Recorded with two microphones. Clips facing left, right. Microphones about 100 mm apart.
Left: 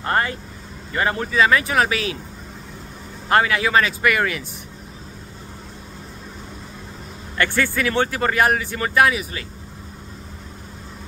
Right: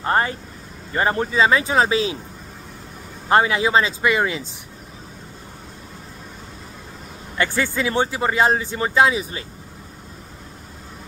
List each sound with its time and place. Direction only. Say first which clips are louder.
0.0 s speech: right 1 dB; 25° right (ahead or behind)
3.3 s speech: right 1 dB; 25° right (ahead or behind)
7.3 s speech: left 1 dB; 20° right (ahead or behind)